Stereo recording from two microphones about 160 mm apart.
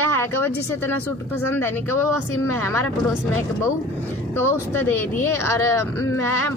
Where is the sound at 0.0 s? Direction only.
15° left (ahead or behind).